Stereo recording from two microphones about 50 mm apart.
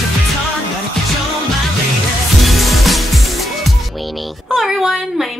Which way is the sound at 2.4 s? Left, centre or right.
Centre.